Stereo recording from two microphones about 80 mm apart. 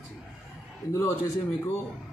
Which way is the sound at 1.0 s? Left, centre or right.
Left.